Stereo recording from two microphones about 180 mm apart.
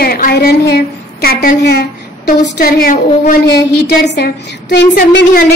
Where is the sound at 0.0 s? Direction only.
55° left (ahead or behind).